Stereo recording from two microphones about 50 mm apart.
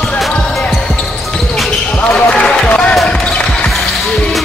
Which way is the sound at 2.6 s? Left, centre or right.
Left.